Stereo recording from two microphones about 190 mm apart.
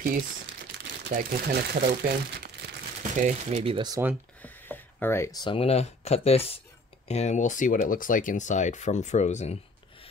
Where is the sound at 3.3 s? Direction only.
40° right (ahead or behind).